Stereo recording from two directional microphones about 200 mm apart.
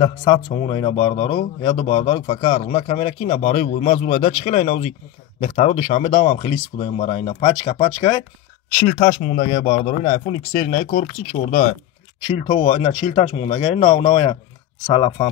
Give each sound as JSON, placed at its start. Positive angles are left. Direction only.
{"t": 0.0, "sound": "speech", "side_deg": 25}
{"t": 8.7, "sound": "speech", "side_deg": 20}
{"t": 9.0, "sound": "speech", "side_deg": 30}
{"t": 10.5, "sound": "speech", "side_deg": 45}
{"t": 12.4, "sound": "speech", "side_deg": 30}